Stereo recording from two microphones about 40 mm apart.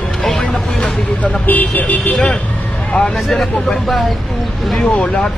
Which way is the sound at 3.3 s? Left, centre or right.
Centre.